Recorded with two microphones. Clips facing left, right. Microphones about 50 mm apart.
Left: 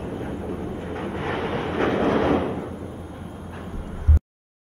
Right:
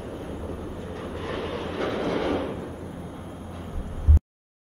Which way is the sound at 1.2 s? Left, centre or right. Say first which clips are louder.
Left 4 dB; left.